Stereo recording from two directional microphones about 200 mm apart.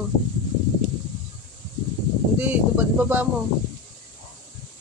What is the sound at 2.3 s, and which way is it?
Speech, 10° right (ahead or behind).